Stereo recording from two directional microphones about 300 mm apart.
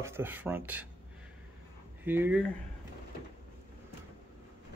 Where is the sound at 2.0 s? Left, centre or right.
Centre.